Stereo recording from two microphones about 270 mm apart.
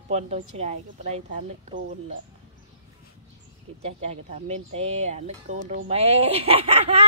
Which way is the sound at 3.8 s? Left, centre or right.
Right.